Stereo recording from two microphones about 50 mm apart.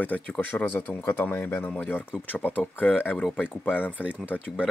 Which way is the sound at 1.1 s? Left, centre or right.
Left.